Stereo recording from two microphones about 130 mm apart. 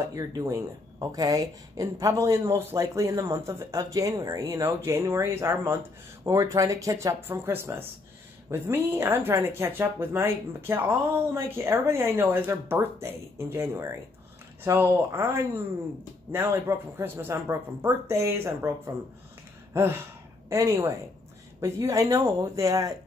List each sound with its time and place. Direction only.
0.1 s speech: 25° right (ahead or behind)
19.7 s a sound: 20° right (ahead or behind)
20.4 s speech: 20° right (ahead or behind)